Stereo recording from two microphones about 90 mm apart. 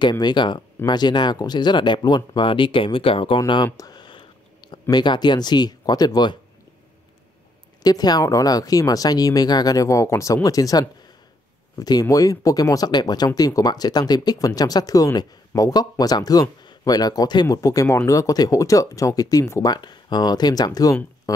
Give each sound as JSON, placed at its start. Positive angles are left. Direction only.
{"t": 0.0, "sound": "speech", "side_deg": 55}
{"t": 3.6, "sound": "a sound", "side_deg": 45}
{"t": 4.8, "sound": "speech", "side_deg": 55}
{"t": 7.8, "sound": "speech", "side_deg": 45}
{"t": 17.6, "sound": "speech", "side_deg": 35}